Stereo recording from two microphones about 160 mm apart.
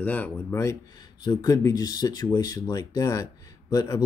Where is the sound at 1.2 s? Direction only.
25° left (ahead or behind).